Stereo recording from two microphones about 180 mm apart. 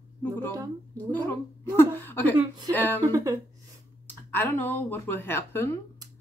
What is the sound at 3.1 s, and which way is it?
Speech, 20° right (ahead or behind).